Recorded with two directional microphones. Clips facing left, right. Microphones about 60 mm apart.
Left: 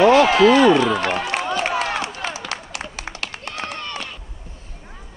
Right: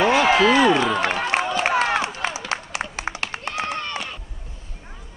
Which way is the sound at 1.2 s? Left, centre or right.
Right.